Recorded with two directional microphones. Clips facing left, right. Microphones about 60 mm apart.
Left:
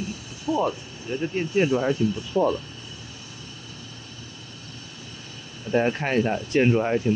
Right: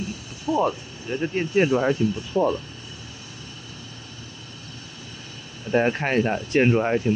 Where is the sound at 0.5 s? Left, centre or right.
Right.